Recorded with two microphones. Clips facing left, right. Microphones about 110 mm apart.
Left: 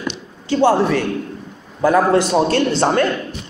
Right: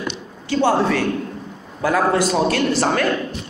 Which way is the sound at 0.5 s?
15° left (ahead or behind).